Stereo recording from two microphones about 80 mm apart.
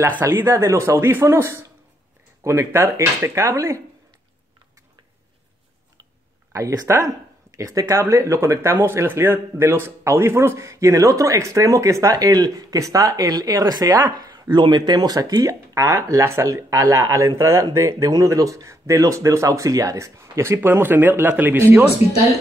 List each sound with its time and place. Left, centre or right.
0.2 s speech: right
6.5 s speech: right
14.6 s speech: right